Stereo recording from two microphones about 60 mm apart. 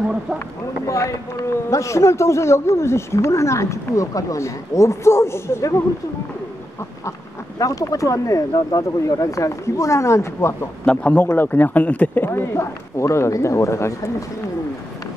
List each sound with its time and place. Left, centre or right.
0.8 s speech: left
7.6 s speech: left
10.9 s a man's voice: left
11.3 s speech: left
12.3 s speech: left